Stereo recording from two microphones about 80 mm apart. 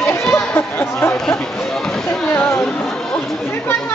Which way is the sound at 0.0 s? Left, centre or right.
Left.